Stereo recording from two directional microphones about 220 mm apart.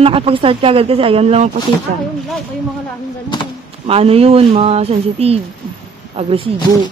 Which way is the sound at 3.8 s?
25° right (ahead or behind).